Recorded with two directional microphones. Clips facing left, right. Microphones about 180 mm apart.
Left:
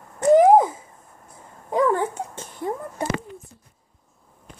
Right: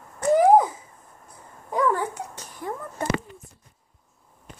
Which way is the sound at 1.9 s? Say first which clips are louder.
Left 4 dB; 30° left (ahead or behind).